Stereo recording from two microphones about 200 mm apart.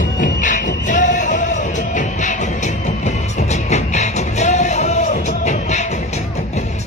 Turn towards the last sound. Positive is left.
turn(degrees=35)  # may be behind; listen again after turning